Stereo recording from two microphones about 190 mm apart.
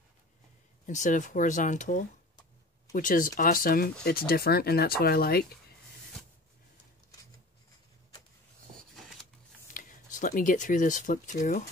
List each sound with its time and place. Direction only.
0.8 s speech: 40° left (ahead or behind)
8.7 s a sound: centre (ahead or behind)
9.8 s speech: 45° left (ahead or behind)